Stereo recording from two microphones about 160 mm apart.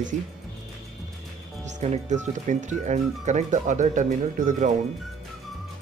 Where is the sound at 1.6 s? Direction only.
45° right (ahead or behind).